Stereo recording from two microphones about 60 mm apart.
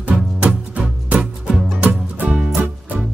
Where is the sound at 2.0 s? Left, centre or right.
Right.